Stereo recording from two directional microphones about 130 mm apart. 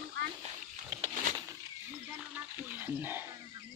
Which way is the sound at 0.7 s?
65° right (ahead or behind).